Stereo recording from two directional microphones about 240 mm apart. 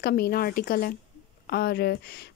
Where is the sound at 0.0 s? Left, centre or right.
Left.